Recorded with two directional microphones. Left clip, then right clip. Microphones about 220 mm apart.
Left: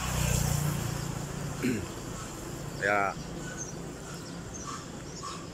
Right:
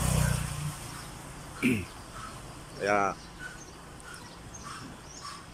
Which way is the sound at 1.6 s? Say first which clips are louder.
Right 4 dB; 10° right (ahead or behind).